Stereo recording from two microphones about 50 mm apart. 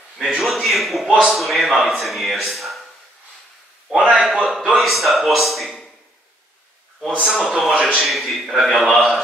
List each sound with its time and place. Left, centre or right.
0.2 s a man's voice: centre
4.0 s a man's voice: right
4.3 s a man's voice: centre
7.2 s a man's voice: centre
7.9 s a man's voice: centre